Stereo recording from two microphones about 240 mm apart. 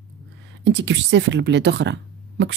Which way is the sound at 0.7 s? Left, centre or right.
Right.